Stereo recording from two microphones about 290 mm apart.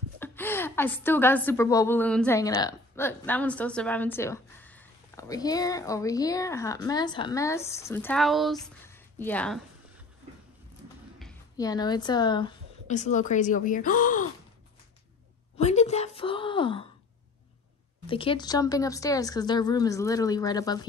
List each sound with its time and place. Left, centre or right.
0.2 s a woman's voice: centre
11.5 s speech: centre
15.5 s speech: left
18.0 s a woman's voice: centre